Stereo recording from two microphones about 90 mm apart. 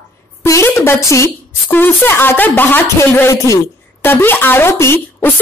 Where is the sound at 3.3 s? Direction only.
35° left (ahead or behind).